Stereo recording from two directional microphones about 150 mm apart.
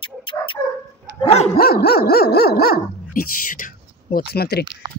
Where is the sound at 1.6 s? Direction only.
90° left.